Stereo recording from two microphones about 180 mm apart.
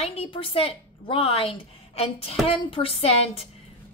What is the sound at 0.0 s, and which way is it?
A woman's voice, 35° left (ahead or behind).